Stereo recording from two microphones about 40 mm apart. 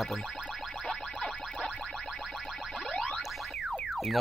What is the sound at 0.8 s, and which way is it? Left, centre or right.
Music, centre.